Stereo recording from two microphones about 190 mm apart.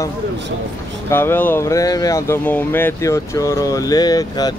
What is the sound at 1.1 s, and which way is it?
Speech, 10° left (ahead or behind).